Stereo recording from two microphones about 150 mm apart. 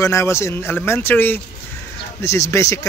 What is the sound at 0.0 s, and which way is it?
Speech, 20° left (ahead or behind).